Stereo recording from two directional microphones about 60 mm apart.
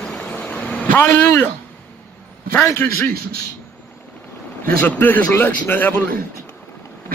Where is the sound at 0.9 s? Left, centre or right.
Left.